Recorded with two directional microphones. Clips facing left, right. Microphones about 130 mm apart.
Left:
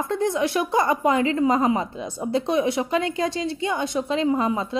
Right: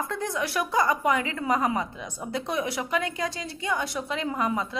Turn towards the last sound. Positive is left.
turn(degrees=25)  # may be behind; listen again after turning